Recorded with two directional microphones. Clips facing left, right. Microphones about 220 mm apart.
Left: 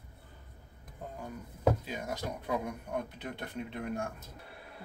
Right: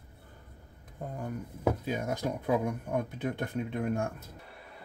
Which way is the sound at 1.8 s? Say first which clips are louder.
Right 6 dB; 50° right (ahead or behind).